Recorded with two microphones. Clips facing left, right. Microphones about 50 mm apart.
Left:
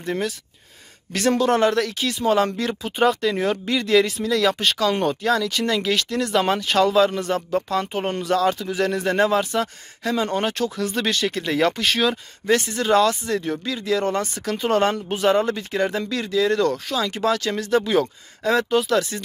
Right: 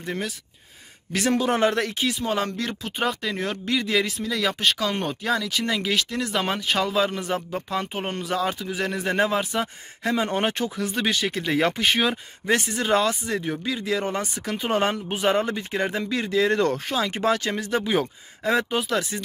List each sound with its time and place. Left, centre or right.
0.0 s speech: centre; by 2.0 s right
2.1 s speech: centre
10.0 s speech: right